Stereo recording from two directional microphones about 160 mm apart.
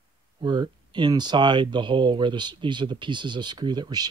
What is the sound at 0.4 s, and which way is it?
Speech, 30° right (ahead or behind).